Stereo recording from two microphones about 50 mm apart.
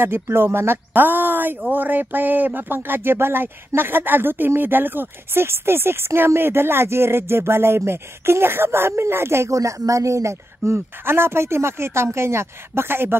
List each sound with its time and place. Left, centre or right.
0.0 s speech: right